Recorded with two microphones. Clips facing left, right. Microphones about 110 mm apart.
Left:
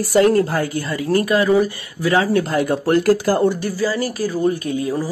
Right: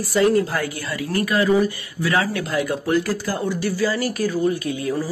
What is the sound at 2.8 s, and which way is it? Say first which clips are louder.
Speech: left 6 dB; 55° left (ahead or behind).